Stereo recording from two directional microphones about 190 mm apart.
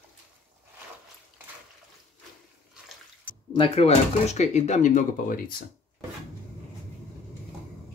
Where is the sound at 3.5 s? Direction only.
30° left (ahead or behind).